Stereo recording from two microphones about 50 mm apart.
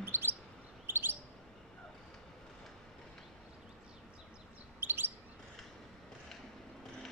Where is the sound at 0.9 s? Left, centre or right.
Right.